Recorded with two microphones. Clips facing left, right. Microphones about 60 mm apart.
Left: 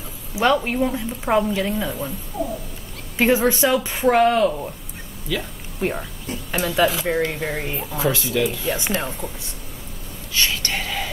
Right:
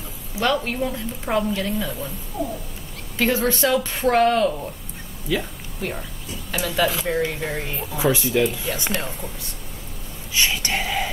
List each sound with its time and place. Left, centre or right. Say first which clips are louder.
0.4 s speech: left 3 dB; centre
3.2 s speech: left 3 dB; centre
5.3 s speech: right 2 dB; centre
5.8 s speech: left 5 dB; centre
6.6 s speech: left 2 dB; centre
8.0 s speech: right 2 dB; centre
8.6 s speech: left 3 dB; left
8.9 s speech: left 2 dB; centre
10.3 s whispering: right 1 dB; centre